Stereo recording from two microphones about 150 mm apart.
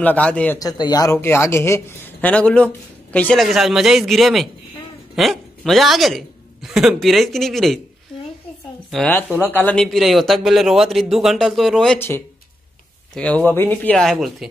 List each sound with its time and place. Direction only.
0.0 s speech: 10° left (ahead or behind)
0.6 s speech: 25° left (ahead or behind); by 3.4 s 10° left (ahead or behind)
3.4 s a man's voice: centre (ahead or behind)
8.9 s speech: 10° left (ahead or behind)
13.1 s speech: 5° left (ahead or behind)